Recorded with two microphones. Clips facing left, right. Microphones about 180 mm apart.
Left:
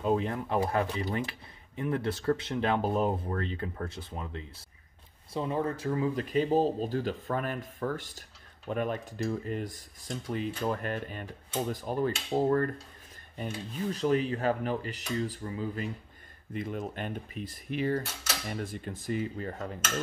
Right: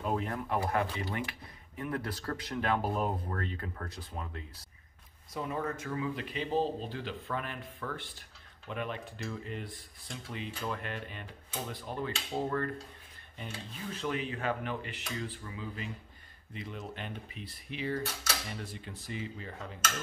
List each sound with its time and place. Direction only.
0.0 s speech: 25° left (ahead or behind); by 12.7 s 40° left (ahead or behind)
13.9 s speech: 40° left (ahead or behind)